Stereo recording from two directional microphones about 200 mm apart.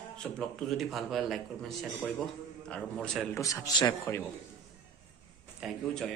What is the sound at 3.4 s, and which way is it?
Speech, 15° left (ahead or behind).